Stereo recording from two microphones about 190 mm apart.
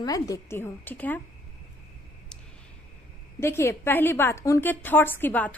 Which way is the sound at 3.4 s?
15° left (ahead or behind).